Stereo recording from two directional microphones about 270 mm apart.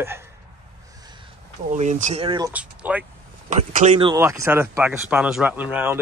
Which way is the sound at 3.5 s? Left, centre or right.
Right.